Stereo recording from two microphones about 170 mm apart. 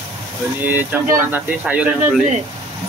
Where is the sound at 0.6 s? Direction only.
10° right (ahead or behind).